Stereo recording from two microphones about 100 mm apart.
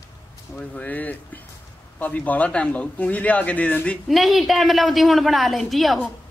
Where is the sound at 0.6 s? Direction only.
15° left (ahead or behind).